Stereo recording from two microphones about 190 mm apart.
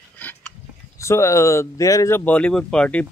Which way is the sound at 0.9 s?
15° left (ahead or behind).